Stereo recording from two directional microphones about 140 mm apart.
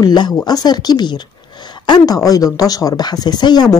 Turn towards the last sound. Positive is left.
turn(degrees=30)  # may be behind; listen again after turning